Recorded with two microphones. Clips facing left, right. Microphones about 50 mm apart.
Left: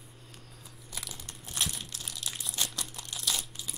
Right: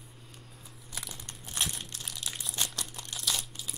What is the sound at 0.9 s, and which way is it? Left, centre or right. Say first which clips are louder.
Crumpling: even; centre.